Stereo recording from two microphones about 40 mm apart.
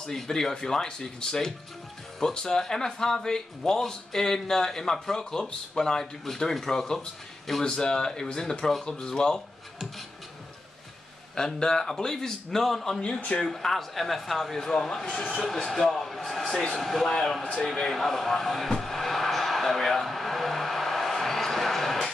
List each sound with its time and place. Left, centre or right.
0.0 s speech: centre
11.3 s speech: centre
14.6 s speech: centre
17.0 s speech: centre
18.5 s a sound: centre